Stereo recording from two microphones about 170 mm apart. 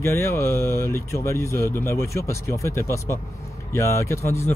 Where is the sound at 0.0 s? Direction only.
15° left (ahead or behind).